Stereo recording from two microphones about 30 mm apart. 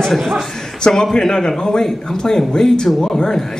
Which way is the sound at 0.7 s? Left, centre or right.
Left.